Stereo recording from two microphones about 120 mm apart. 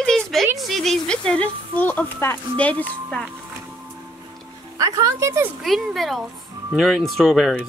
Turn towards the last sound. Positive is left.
turn(degrees=0)  # may be behind; listen again after turning